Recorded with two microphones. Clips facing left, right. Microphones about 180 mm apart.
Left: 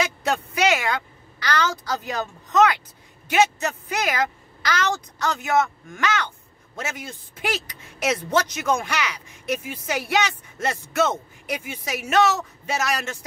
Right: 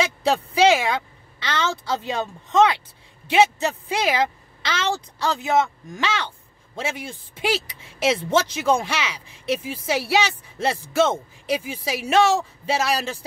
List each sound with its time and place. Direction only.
0.0 s a woman's voice: 30° right (ahead or behind)